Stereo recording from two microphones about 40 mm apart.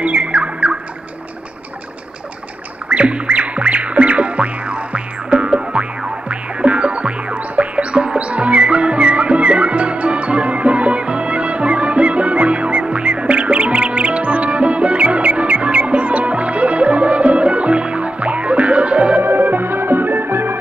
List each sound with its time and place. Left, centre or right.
0.0 s bird: right
2.9 s music: right
19.2 s music: right